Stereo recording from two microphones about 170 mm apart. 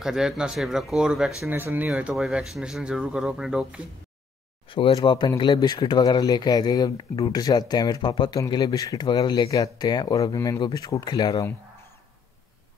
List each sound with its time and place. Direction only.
0.0 s speech: 5° right (ahead or behind)
4.6 s speech: 30° left (ahead or behind)